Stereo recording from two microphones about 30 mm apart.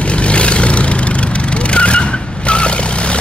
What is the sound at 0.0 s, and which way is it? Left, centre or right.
Vehicle, left.